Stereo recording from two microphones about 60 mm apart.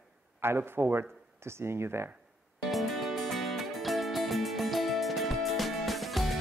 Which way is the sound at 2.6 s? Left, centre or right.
Centre.